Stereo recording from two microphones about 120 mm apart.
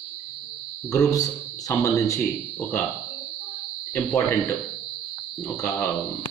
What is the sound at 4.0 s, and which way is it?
Speech, 15° left (ahead or behind).